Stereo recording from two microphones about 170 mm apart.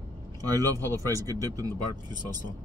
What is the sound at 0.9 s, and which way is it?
Speech, 15° left (ahead or behind).